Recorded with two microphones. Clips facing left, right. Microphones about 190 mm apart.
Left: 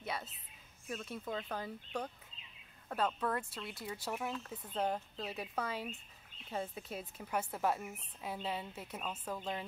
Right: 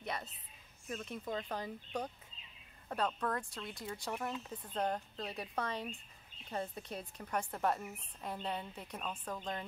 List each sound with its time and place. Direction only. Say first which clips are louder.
1.1 s a woman's voice: right 1 dB; 5° left (ahead or behind)